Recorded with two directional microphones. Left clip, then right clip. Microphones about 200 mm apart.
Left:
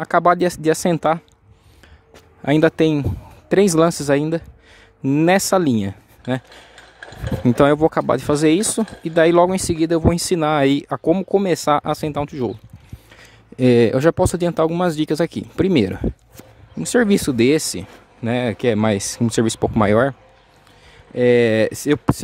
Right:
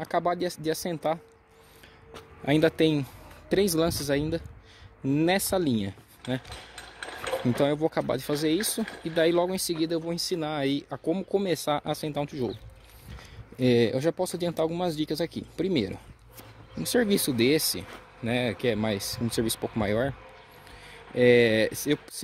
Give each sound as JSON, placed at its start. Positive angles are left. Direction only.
{"t": 0.0, "sound": "speech", "side_deg": 40}
{"t": 2.4, "sound": "speech", "side_deg": 30}
{"t": 6.7, "sound": "a sound", "side_deg": -45}
{"t": 7.4, "sound": "speech", "side_deg": 40}
{"t": 13.6, "sound": "speech", "side_deg": 35}
{"t": 21.1, "sound": "speech", "side_deg": 25}